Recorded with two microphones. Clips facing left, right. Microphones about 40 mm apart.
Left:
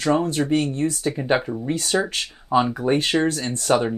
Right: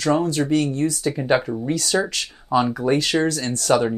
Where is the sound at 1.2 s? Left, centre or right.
Centre.